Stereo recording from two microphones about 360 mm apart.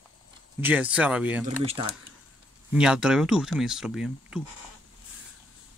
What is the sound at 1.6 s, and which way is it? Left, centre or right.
Speech, centre.